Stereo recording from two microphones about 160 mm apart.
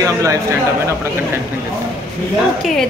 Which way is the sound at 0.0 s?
20° right (ahead or behind).